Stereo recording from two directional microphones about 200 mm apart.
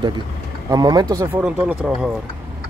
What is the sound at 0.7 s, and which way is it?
Speech, 20° right (ahead or behind).